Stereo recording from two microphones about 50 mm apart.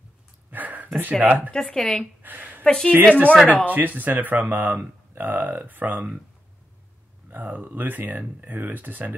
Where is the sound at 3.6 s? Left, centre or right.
Right.